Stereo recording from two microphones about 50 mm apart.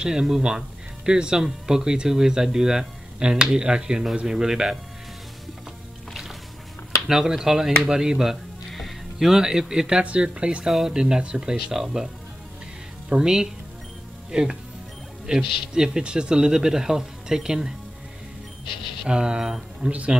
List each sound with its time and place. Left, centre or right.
0.0 s speech: centre
7.1 s speech: centre
10.6 s speech: centre
13.1 s speech: centre
19.0 s speech: centre